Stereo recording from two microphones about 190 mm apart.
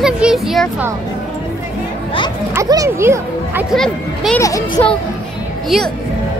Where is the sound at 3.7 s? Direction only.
Centre (ahead or behind).